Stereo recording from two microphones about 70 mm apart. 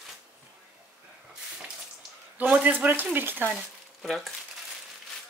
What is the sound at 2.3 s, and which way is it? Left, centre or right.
Speech, right.